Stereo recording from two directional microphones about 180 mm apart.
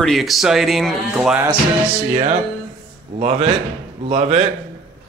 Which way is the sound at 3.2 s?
35° right (ahead or behind).